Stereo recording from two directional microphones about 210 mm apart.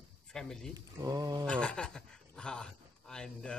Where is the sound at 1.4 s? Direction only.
5° left (ahead or behind).